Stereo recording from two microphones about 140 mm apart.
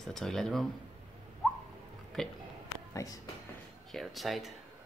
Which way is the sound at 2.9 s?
25° left (ahead or behind).